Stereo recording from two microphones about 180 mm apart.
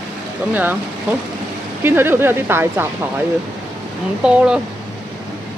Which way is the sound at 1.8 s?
10° right (ahead or behind).